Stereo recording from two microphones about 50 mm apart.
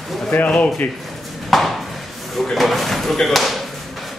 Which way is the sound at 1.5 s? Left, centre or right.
Centre.